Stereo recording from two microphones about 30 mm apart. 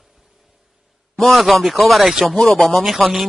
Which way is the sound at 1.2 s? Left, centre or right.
Centre.